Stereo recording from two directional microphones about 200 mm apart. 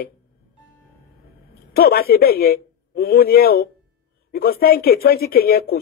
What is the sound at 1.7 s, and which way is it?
Speech, 50° left (ahead or behind).